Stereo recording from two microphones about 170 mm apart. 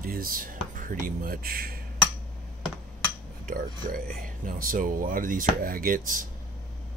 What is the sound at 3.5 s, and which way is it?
Speech, 55° right (ahead or behind).